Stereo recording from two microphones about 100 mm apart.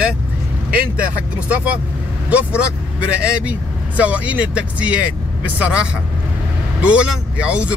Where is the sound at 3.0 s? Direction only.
10° right (ahead or behind).